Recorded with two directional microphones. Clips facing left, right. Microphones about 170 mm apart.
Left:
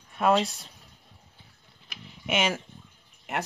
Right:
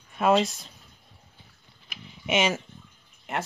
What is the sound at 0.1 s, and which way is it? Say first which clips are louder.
Speech: right 2 dB; centre (ahead or behind).